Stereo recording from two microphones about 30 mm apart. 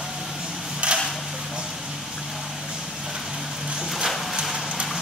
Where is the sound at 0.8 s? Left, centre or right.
Right.